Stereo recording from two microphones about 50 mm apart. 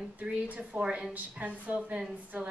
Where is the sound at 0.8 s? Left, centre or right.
Centre.